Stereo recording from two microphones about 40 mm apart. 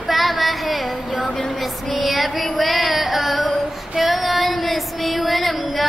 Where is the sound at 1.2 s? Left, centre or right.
Centre.